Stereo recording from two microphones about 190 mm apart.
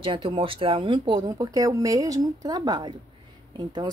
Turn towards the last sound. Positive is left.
turn(degrees=-25)  # may be behind; listen again after turning